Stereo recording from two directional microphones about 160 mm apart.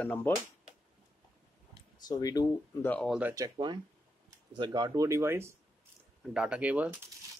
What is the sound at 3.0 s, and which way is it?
Speech, 5° right (ahead or behind).